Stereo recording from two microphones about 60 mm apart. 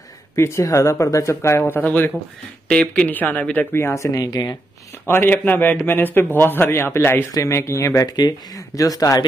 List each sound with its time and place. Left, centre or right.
0.4 s speech: left
1.9 s a man's voice: left
3.7 s speech: left
4.9 s a man's voice: left
7.4 s speech: left
8.1 s speech: left